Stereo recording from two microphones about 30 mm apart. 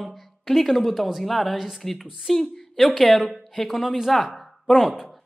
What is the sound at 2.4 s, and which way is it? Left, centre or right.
A woman's voice, centre.